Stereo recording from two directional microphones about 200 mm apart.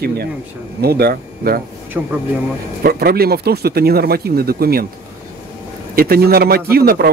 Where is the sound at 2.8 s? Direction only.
50° right (ahead or behind).